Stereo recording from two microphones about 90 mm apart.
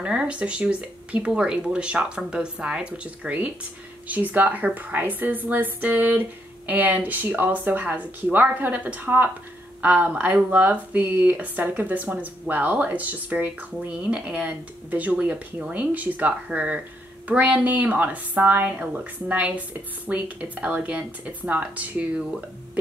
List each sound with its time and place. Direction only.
0.0 s a woman's voice: 10° right (ahead or behind)